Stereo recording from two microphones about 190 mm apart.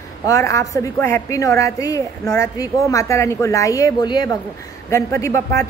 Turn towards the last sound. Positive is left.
turn(degrees=15)  # may be behind; listen again after turning